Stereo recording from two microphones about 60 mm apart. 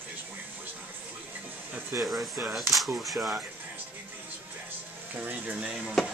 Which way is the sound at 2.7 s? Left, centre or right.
Centre.